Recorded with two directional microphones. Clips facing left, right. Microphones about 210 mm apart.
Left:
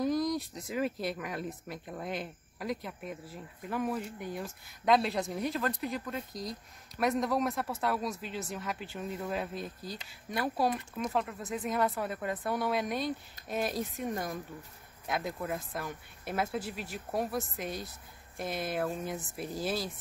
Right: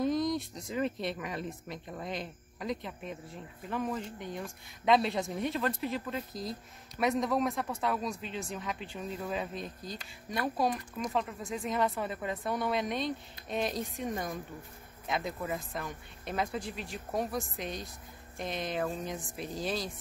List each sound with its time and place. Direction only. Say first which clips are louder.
0.0 s speech: even; centre (ahead or behind)